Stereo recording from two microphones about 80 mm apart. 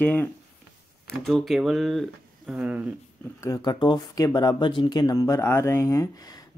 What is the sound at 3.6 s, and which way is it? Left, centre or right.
Speech, left.